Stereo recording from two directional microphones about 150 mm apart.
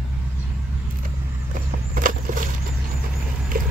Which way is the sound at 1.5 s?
60° right (ahead or behind).